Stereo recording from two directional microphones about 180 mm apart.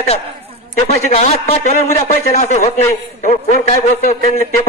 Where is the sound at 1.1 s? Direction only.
35° left (ahead or behind).